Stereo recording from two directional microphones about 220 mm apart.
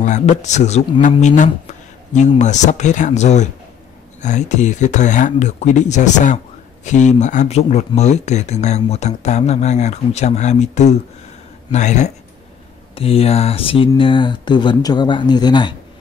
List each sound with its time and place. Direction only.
0.0 s speech: 35° left (ahead or behind)